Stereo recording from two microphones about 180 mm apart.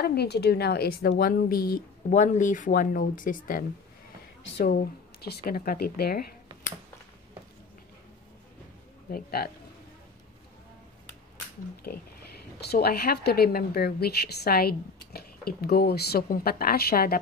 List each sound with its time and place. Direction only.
0.0 s a woman's voice: 60° left (ahead or behind)
2.0 s a woman's voice: 45° left (ahead or behind); by 6.2 s 60° left (ahead or behind)
9.1 s a woman's voice: 55° left (ahead or behind)
11.9 s a woman's voice: 55° left (ahead or behind)